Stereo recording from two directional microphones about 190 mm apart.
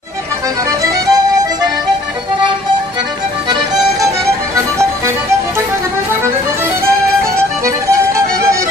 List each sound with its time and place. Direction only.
0.7 s music: 20° right (ahead or behind)
7.6 s music: 15° right (ahead or behind)